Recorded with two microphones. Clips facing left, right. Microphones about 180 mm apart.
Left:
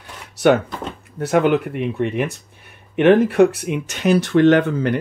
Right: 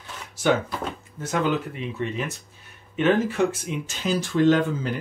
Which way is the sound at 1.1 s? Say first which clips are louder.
Left 9 dB; 65° left (ahead or behind).